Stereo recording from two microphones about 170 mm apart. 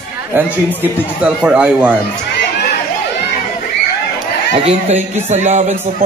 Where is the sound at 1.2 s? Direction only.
5° right (ahead or behind).